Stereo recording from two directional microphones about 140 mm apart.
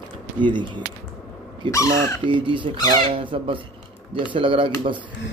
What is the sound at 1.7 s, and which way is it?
Speech, 25° left (ahead or behind).